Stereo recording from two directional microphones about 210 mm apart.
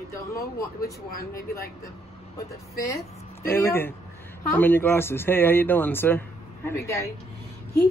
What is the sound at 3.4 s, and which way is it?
Speech, 10° left (ahead or behind).